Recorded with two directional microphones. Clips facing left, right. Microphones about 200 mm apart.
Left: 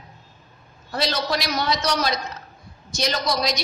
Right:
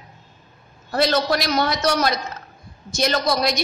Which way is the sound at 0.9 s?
50° right (ahead or behind).